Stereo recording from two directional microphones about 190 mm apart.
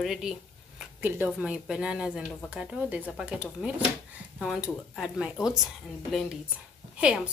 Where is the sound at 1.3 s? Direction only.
5° right (ahead or behind).